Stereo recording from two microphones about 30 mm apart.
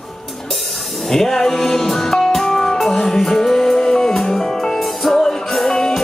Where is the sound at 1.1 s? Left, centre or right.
Centre.